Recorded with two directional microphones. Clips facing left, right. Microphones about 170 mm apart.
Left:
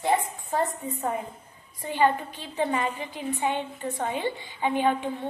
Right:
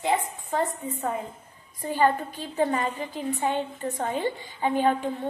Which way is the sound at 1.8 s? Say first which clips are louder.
Right 1 dB; 40° right (ahead or behind).